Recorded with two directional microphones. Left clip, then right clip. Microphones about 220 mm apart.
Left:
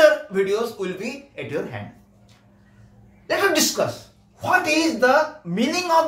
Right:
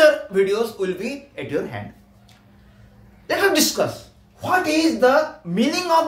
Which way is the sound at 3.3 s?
15° right (ahead or behind).